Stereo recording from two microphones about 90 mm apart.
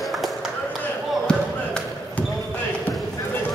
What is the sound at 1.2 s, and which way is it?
Basketball bounce, 10° left (ahead or behind).